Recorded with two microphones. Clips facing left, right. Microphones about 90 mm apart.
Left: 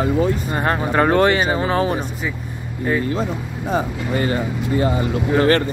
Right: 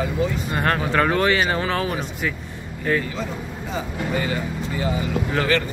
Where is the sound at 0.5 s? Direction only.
20° left (ahead or behind).